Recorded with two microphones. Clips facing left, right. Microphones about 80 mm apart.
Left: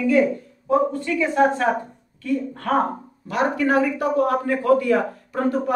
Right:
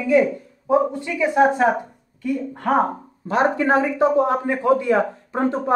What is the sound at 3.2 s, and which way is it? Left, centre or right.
Speech, right.